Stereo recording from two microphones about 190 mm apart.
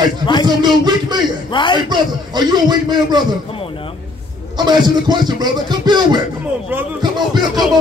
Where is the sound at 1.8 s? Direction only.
25° right (ahead or behind).